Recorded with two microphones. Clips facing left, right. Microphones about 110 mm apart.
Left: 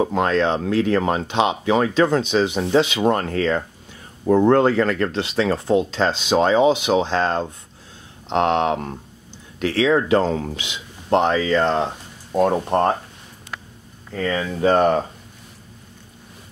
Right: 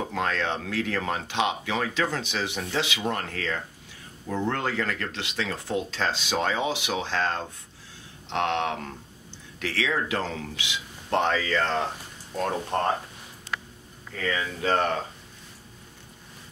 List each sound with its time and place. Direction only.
0.0 s speech: 25° left (ahead or behind)
3.0 s speech: 40° left (ahead or behind)
11.1 s speech: 20° left (ahead or behind)
14.1 s speech: 35° left (ahead or behind)
14.6 s speech: 20° left (ahead or behind)